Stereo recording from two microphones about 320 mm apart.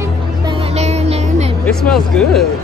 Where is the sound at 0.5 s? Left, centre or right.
Centre.